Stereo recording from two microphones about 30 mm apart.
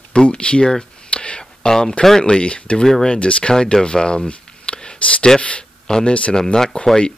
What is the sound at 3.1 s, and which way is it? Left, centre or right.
Speech, left.